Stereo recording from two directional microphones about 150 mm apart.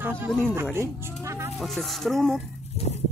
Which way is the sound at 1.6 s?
Centre (ahead or behind).